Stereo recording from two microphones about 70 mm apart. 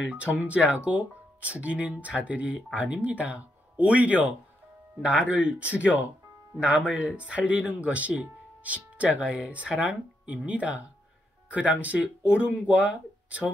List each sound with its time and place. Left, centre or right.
0.0 s speech: centre